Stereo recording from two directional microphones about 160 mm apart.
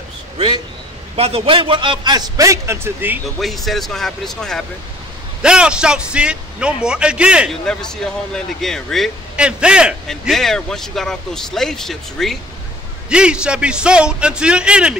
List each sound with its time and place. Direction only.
1.1 s a man's voice: 35° right (ahead or behind); by 3.2 s 15° right (ahead or behind)
3.3 s a man's voice: centre (ahead or behind)
7.6 s a man's voice: 5° left (ahead or behind)